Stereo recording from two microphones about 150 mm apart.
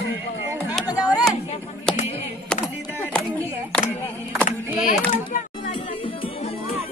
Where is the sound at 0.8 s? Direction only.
25° left (ahead or behind).